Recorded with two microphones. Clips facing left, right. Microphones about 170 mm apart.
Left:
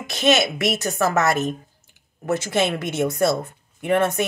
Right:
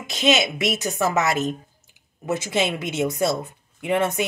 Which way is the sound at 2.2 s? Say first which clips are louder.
Left 2 dB; 15° right (ahead or behind).